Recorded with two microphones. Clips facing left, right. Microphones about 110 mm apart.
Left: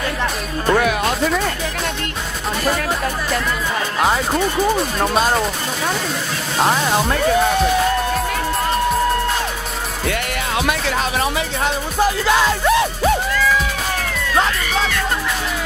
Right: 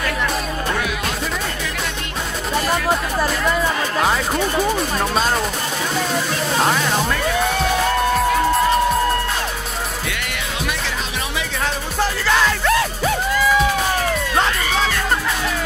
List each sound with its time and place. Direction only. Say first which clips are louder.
4.0 s speech: left 3 dB; 5° left (ahead or behind)
10.7 s music: left 5 dB; 45° left (ahead or behind)
12.0 s music: left 2 dB; 15° left (ahead or behind)